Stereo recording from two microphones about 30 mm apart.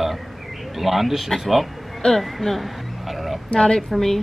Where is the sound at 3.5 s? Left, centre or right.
Left.